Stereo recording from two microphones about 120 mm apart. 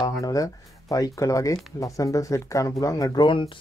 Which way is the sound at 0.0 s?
30° left (ahead or behind).